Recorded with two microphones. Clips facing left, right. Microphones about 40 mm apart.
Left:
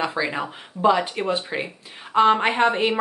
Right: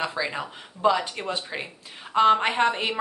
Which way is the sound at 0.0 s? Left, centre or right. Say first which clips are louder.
Left 4 dB; centre.